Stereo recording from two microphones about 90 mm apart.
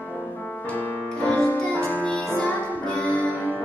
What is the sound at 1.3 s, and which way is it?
Music, 10° left (ahead or behind).